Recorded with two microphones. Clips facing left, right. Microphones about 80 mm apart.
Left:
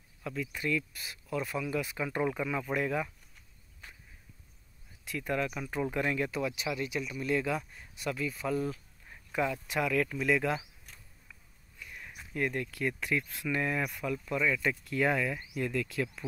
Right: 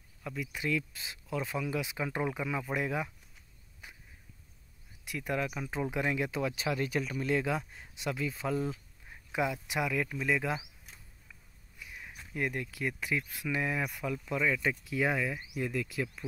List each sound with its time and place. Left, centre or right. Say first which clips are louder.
0.2 s speech: left 1 dB; centre
3.8 s a sound: even; centre
5.0 s speech: left 1 dB; centre
6.4 s speech: right 1 dB; right
7.2 s speech: left 3 dB; right
9.1 s speech: left 1 dB; centre
11.8 s a sound: even; centre
12.4 s speech: left 2 dB; centre